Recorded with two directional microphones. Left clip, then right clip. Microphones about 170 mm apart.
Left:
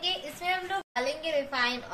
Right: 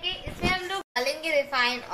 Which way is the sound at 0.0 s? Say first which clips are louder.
Right 1 dB; centre (ahead or behind).